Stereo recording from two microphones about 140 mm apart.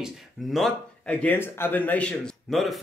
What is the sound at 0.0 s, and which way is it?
Speech, centre (ahead or behind).